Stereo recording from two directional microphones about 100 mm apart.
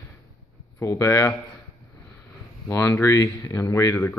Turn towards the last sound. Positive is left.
turn(degrees=25)  # may be behind; listen again after turning